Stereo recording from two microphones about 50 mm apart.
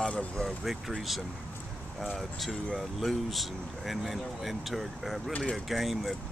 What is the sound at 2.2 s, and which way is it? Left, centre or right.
Speech, centre.